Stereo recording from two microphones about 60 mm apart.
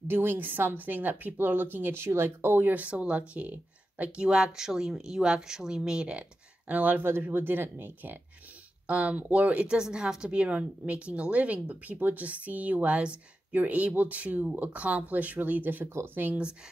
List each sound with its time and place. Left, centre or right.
0.1 s a woman's voice: right
2.7 s speech: right
4.3 s speech: centre
6.7 s a woman's voice: right
7.0 s a woman's voice: right
8.8 s a woman's voice: right